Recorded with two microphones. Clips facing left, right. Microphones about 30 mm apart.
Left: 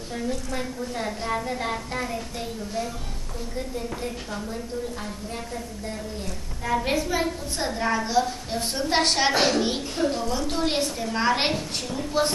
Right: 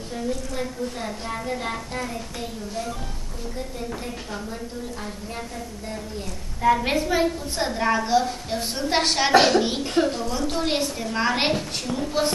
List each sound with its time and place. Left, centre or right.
0.1 s a woman's voice: centre
4.0 s a woman's voice: centre
6.6 s a woman's voice: centre
9.3 s a woman's voice: right
10.0 s a woman's voice: centre